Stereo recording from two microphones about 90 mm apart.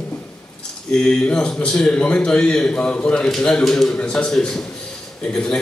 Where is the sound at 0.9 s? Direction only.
10° left (ahead or behind).